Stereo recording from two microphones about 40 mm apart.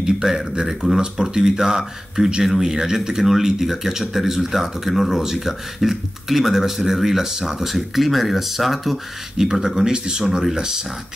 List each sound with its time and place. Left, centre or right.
0.0 s speech: centre
9.4 s speech: centre